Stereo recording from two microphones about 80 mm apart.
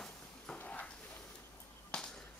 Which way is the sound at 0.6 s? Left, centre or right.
Centre.